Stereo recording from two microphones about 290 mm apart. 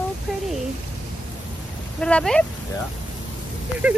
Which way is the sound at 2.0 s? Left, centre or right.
Centre.